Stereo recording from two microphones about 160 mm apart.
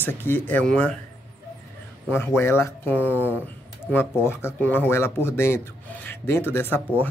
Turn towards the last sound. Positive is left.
turn(degrees=10)  # may be behind; listen again after turning